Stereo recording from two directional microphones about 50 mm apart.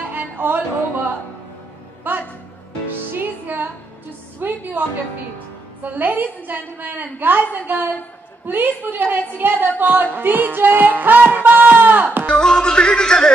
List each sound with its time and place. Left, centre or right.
0.1 s music: right
2.1 s music: right
5.8 s a woman's voice: right
12.3 s music: centre